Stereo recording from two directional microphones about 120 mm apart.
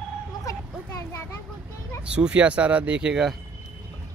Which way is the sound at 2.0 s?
10° right (ahead or behind).